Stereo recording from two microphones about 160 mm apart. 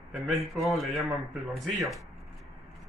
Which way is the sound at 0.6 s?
Centre (ahead or behind).